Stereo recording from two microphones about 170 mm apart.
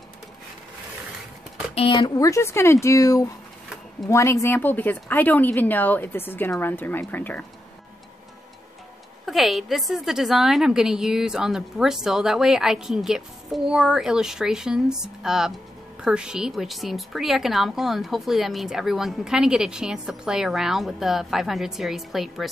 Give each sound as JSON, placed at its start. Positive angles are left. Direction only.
{"t": 1.8, "sound": "speech", "side_deg": 30}
{"t": 9.2, "sound": "speech", "side_deg": 0}